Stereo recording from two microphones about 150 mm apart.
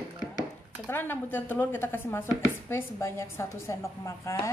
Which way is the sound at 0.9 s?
15° left (ahead or behind).